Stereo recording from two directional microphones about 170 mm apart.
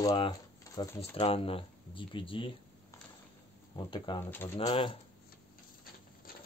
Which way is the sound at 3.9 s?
30° left (ahead or behind).